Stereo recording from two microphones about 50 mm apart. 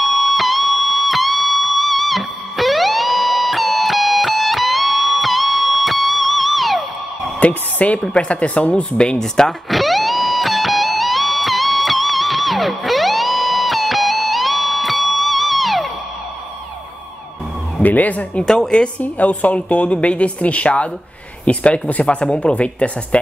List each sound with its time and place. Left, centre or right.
0.0 s music: centre
7.3 s speech: left
8.0 s speech: centre
9.7 s music: centre
17.8 s speech: left
18.4 s speech: centre